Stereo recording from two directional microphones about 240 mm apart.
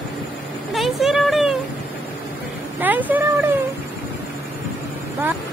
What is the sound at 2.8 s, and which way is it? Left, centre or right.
Speech, centre.